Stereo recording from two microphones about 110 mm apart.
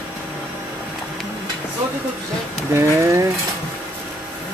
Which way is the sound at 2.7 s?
25° right (ahead or behind).